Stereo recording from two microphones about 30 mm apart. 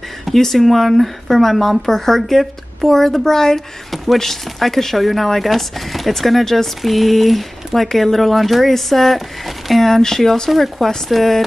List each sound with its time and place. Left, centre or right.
0.4 s speech: centre
10.5 s speech: centre